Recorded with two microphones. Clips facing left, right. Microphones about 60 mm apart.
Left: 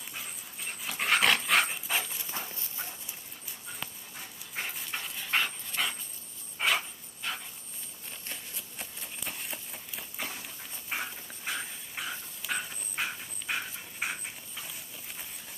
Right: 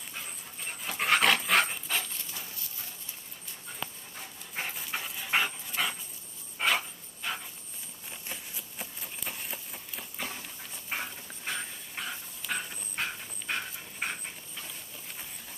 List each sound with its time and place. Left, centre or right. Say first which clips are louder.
0.6 s dog: right 1 dB; centre
1.9 s dog: left 1 dB; centre
2.3 s clip-clop: left 4 dB; left
4.6 s dog: right 1 dB; centre
7.2 s a sound: right 1 dB; centre